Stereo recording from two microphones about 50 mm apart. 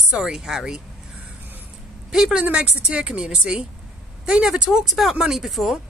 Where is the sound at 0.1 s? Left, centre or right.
Centre.